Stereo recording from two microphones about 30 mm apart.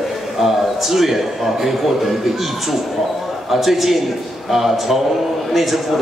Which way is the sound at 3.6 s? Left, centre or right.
Centre.